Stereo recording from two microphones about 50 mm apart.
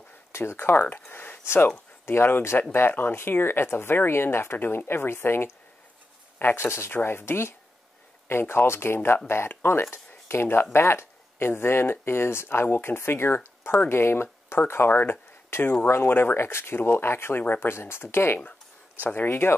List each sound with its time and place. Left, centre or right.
0.3 s speech: left
0.7 s speech: left
1.1 s a sound: left
1.4 s speech: left
6.9 s speech: left
14.7 s speech: left
15.5 s speech: left
15.9 s speech: left